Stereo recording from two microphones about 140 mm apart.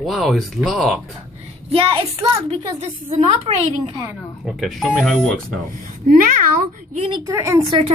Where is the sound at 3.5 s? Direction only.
40° right (ahead or behind).